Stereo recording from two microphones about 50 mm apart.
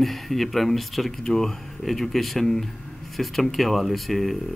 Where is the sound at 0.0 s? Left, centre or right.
Centre.